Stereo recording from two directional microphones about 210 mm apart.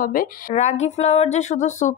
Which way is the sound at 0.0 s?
40° left (ahead or behind).